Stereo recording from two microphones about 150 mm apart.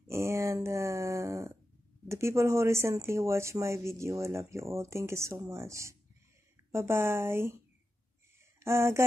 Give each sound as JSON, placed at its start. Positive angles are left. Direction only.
{"t": 0.1, "sound": "a sound", "side_deg": -20}
{"t": 2.0, "sound": "a woman's voice", "side_deg": -20}
{"t": 8.5, "sound": "speech", "side_deg": -15}